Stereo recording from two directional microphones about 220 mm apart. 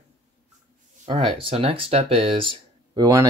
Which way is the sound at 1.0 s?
25° right (ahead or behind).